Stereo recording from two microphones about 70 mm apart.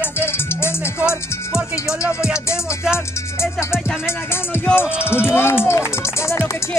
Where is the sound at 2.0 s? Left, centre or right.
Left.